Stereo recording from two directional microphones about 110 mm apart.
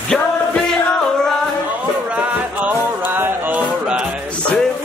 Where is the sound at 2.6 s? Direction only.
15° right (ahead or behind).